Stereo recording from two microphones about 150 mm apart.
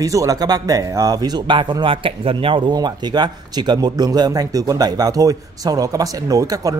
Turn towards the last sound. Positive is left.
turn(degrees=-25)  # may be behind; listen again after turning